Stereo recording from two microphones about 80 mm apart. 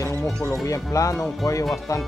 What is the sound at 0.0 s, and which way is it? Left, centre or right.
Music, left.